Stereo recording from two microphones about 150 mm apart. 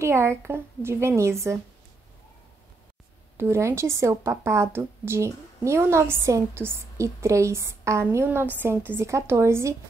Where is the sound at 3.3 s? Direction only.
15° right (ahead or behind).